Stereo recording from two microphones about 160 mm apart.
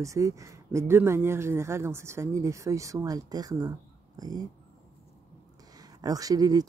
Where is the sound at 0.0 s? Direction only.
20° right (ahead or behind).